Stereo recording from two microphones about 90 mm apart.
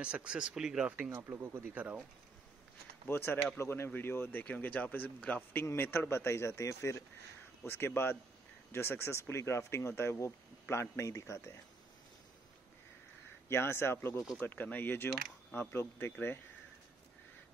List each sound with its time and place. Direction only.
0.0 s speech: 10° right (ahead or behind)
3.1 s speech: 25° left (ahead or behind)
13.5 s speech: 30° left (ahead or behind)